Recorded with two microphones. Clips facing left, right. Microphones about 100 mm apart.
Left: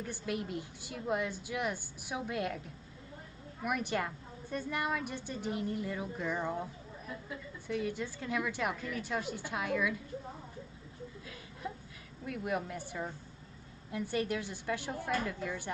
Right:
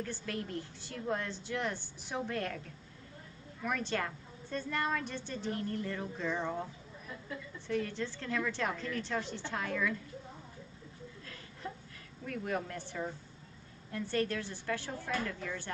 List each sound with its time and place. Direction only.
0.0 s a woman's voice: 15° left (ahead or behind)
3.6 s a woman's voice: 15° left (ahead or behind)
11.6 s a sound: 10° left (ahead or behind)
12.3 s a woman's voice: 10° left (ahead or behind)